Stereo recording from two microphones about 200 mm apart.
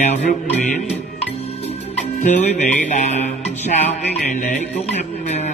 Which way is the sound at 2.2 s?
35° left (ahead or behind).